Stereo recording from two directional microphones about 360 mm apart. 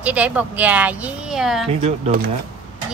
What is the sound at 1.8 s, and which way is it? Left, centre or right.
Speech, centre.